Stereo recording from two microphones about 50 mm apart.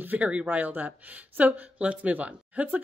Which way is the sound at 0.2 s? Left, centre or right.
Right.